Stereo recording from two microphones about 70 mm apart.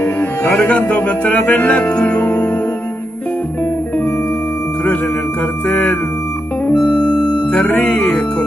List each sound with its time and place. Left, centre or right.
0.2 s music: left
5.7 s music: left
6.7 s music: centre